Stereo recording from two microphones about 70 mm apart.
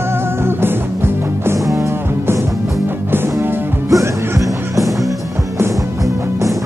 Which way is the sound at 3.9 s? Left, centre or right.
Right.